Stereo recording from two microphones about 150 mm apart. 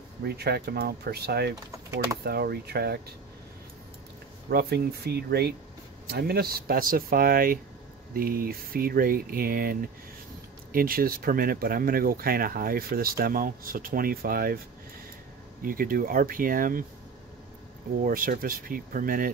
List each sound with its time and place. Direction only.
0.2 s speech: 90° right
4.5 s speech: 90° right
15.6 s speech: 70° right (ahead or behind)
18.0 s speech: 70° right (ahead or behind)